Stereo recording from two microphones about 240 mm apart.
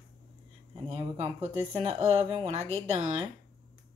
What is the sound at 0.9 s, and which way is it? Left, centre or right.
Speech, right.